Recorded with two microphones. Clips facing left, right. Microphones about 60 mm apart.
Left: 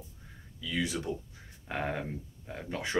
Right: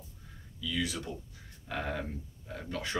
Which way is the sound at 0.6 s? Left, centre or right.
Left.